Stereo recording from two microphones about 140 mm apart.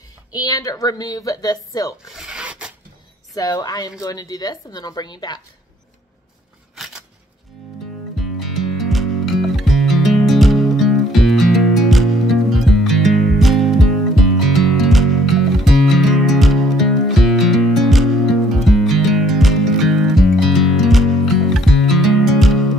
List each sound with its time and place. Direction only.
0.3 s a woman's voice: 30° left (ahead or behind)
2.1 s filing: 5° right (ahead or behind)
3.3 s a woman's voice: 25° left (ahead or behind)
6.7 s scissors: centre (ahead or behind)
8.2 s music: centre (ahead or behind)